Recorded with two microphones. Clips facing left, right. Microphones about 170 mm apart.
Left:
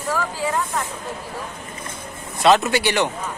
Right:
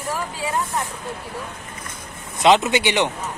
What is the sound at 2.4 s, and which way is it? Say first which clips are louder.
Speech: even; 20° right (ahead or behind).